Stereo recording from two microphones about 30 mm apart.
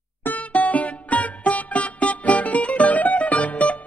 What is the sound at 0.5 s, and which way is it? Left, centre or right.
Music, left.